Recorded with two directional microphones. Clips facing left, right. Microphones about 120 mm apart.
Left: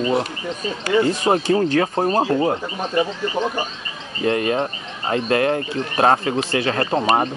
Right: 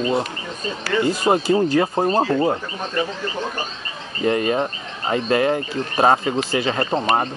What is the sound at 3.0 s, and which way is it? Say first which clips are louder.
Speech: left 3 dB; 15° left (ahead or behind).